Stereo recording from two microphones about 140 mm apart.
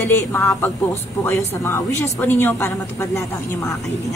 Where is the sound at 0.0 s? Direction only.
20° left (ahead or behind).